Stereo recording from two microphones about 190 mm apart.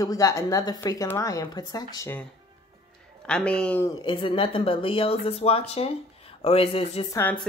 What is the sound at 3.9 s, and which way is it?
A woman's voice, 25° left (ahead or behind).